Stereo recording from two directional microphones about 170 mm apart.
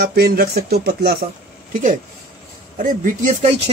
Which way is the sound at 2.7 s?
50° right (ahead or behind).